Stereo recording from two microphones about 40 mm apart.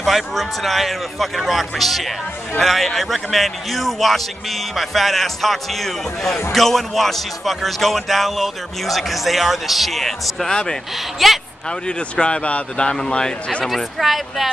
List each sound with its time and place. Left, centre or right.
0.0 s speech: centre
10.5 s speech: centre
11.2 s speech: centre
12.2 s speech: left
14.0 s speech: centre